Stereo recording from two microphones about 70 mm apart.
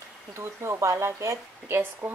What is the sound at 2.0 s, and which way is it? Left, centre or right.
Speech, centre.